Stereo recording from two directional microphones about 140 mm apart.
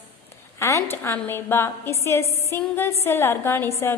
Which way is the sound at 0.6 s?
20° left (ahead or behind).